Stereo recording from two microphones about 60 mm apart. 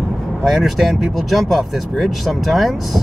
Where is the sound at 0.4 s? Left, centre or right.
Centre.